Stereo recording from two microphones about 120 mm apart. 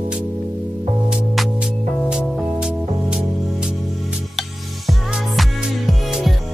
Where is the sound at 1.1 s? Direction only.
5° right (ahead or behind).